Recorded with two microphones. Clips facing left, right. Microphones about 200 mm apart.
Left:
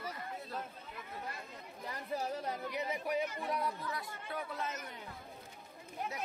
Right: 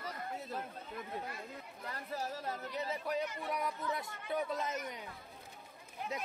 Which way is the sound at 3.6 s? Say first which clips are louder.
Right 1 dB; 25° right (ahead or behind).